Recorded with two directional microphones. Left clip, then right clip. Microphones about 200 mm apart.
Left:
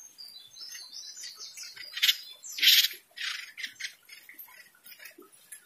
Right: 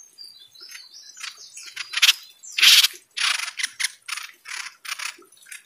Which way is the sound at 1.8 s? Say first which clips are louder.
Right 8 dB; 25° right (ahead or behind).